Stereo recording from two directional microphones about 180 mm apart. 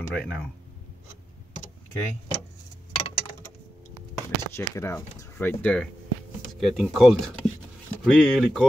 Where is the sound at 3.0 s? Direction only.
30° left (ahead or behind).